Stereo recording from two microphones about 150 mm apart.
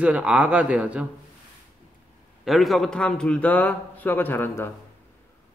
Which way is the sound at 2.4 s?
Centre (ahead or behind).